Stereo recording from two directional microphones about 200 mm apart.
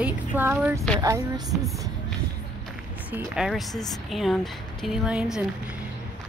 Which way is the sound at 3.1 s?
5° right (ahead or behind).